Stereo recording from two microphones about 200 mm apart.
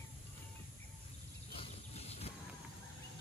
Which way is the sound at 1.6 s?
30° left (ahead or behind).